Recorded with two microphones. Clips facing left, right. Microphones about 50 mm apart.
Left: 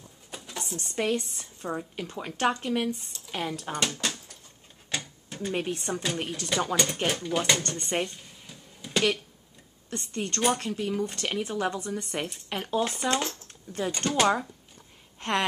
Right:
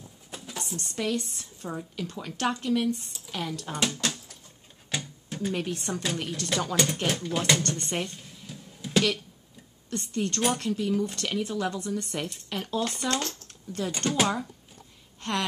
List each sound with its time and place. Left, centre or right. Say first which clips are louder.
0.3 s a sound: even; centre
0.9 s speech: left 2 dB; left
1.3 s speech: left 3 dB; centre
4.0 s a sound: right 1 dB; centre
5.5 s speech: left 2 dB; centre
8.5 s a sound: right 6 dB; centre
9.9 s speech: right 2 dB; centre
10.6 s speech: right 2 dB; centre
14.2 s speech: left 3 dB; centre
15.1 s gasp: left 2 dB; left